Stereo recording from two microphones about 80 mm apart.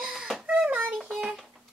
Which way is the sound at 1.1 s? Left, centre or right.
Centre.